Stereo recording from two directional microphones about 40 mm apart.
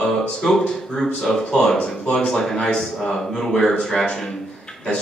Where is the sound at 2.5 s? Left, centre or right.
Left.